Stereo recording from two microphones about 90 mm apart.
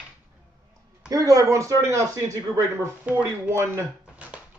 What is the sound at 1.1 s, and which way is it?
Speech, 40° right (ahead or behind).